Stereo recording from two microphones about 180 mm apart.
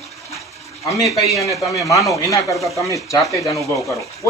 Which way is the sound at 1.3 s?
20° left (ahead or behind).